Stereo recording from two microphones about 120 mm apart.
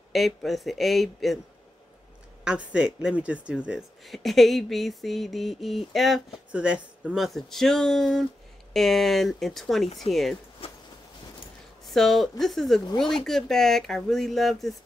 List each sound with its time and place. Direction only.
0.1 s speech: centre (ahead or behind)
2.4 s speech: 10° right (ahead or behind)
10.6 s a sound: 50° left (ahead or behind)
11.8 s speech: centre (ahead or behind)